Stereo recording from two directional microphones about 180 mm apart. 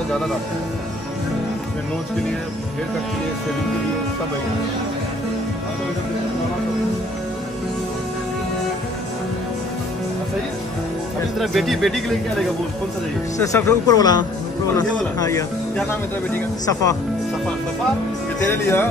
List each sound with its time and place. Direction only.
11.3 s speech: centre (ahead or behind)
13.4 s speech: 15° left (ahead or behind)
18.5 s speech: 10° left (ahead or behind)